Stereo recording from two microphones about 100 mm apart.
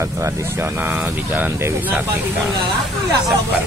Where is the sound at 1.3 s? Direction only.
20° right (ahead or behind).